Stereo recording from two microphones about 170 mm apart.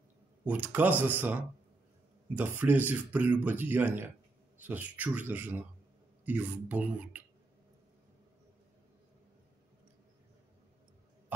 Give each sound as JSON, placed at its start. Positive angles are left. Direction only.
{"t": 0.5, "sound": "speech", "side_deg": -10}